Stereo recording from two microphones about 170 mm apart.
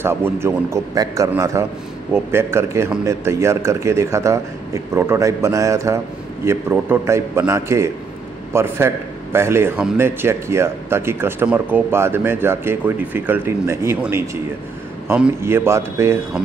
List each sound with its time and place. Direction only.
0.0 s a man's voice: 15° right (ahead or behind)